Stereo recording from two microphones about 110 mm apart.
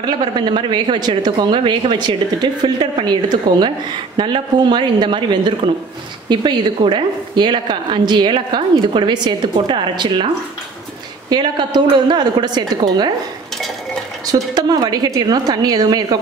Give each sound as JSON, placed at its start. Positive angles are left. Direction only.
{"t": 0.0, "sound": "a woman's voice", "side_deg": -45}
{"t": 14.5, "sound": "a woman's voice", "side_deg": -40}